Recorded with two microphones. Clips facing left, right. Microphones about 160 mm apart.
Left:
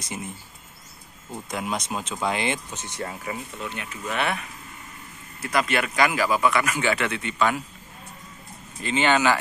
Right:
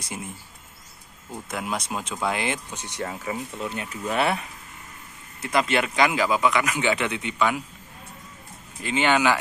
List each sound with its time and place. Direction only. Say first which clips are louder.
0.0 s speech: left 1 dB; 5° right (ahead or behind)
1.5 s speech: left 1 dB; 5° right (ahead or behind)
3.1 s speech: right 2 dB; 25° right (ahead or behind)
8.8 s speech: even; 10° right (ahead or behind)